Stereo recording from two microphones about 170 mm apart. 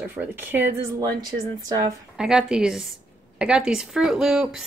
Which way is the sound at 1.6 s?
20° right (ahead or behind).